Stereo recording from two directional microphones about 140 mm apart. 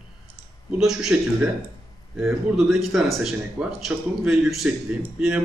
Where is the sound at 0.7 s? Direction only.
5° right (ahead or behind).